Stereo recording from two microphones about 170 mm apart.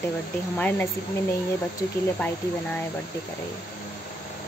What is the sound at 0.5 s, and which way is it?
Speech, 10° left (ahead or behind).